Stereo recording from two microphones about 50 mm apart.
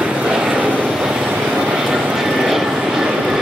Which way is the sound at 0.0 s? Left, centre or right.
Centre.